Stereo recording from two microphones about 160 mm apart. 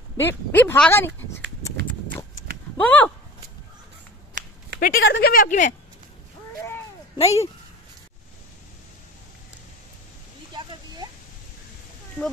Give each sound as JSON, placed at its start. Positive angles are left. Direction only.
{"t": 0.2, "sound": "speech", "side_deg": 15}
{"t": 2.8, "sound": "speech", "side_deg": 10}
{"t": 4.4, "sound": "a sound", "side_deg": -55}
{"t": 4.7, "sound": "speech", "side_deg": 60}
{"t": 7.2, "sound": "speech", "side_deg": 40}
{"t": 10.5, "sound": "a sound", "side_deg": -30}